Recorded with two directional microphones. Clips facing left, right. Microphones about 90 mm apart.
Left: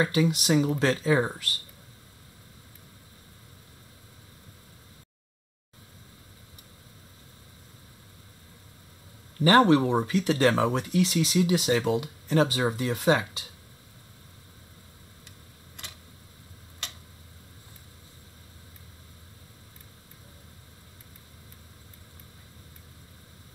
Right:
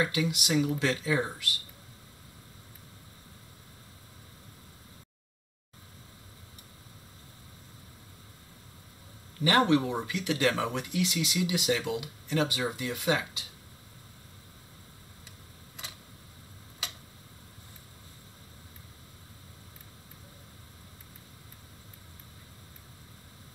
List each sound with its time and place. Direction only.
0.0 s speech: 35° left (ahead or behind)
9.4 s speech: 35° left (ahead or behind)
15.2 s a sound: centre (ahead or behind)
16.8 s tick-tock: 5° right (ahead or behind)